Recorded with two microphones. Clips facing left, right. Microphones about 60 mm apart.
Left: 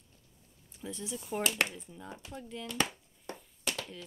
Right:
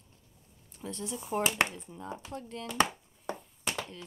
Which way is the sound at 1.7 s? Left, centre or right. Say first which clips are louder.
Right 4 dB; centre.